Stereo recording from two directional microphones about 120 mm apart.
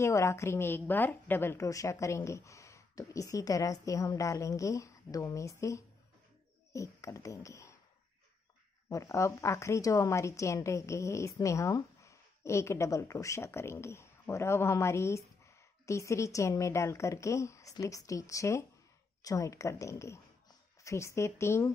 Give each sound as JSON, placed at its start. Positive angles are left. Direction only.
{"t": 0.0, "sound": "speech", "side_deg": 25}
{"t": 8.8, "sound": "speech", "side_deg": 25}